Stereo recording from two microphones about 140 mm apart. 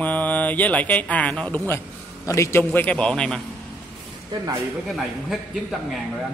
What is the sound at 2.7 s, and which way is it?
Mantra, 10° left (ahead or behind).